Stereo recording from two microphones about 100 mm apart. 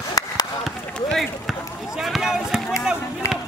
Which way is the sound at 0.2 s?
35° left (ahead or behind).